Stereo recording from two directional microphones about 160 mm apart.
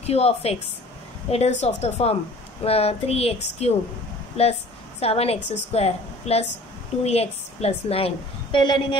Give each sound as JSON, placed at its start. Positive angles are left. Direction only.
{"t": 0.0, "sound": "a woman's voice", "side_deg": 40}
{"t": 5.0, "sound": "a woman's voice", "side_deg": 40}